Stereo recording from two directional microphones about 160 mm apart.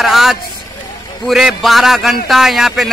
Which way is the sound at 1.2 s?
Centre (ahead or behind).